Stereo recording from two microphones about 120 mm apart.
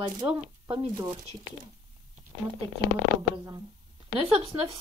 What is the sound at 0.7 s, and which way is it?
Speech, 35° right (ahead or behind).